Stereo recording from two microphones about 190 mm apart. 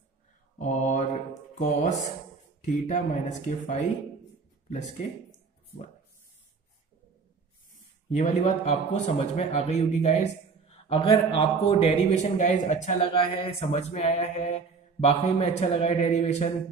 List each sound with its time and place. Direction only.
0.6 s mantra: 45° left (ahead or behind)
1.6 s a man's voice: 40° left (ahead or behind)
8.1 s a man's voice: 40° left (ahead or behind)